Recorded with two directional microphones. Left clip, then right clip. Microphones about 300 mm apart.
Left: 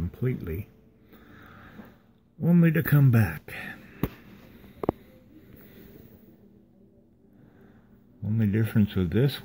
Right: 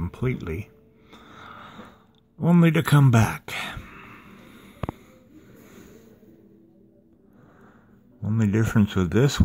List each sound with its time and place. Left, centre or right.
0.0 s speech: centre
1.1 s a sound: centre
2.4 s speech: centre
8.2 s speech: centre